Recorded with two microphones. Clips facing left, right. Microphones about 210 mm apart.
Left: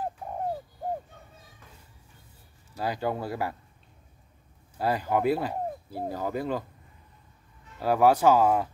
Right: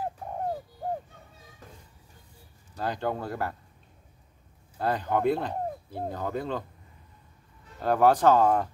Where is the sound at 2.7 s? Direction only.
10° left (ahead or behind).